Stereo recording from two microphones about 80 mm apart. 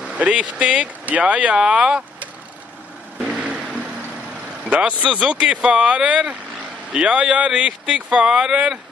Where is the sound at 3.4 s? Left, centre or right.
Centre.